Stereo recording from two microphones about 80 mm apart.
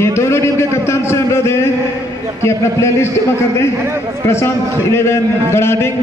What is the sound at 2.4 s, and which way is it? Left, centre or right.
Speech, left.